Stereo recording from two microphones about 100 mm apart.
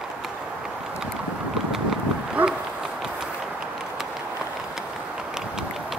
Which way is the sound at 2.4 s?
15° right (ahead or behind).